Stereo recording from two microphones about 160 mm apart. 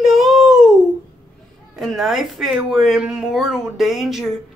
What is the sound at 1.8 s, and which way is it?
Speech, centre (ahead or behind).